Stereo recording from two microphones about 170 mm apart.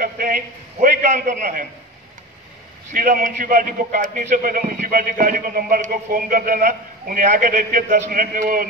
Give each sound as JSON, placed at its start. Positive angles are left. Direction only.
{"t": 0.0, "sound": "a man's voice", "side_deg": -55}
{"t": 2.9, "sound": "a man's voice", "side_deg": -50}